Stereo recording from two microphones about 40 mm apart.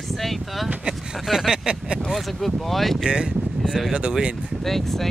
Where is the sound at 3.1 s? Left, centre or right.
Right.